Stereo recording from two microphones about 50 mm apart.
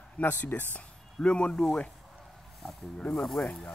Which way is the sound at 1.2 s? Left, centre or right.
Left.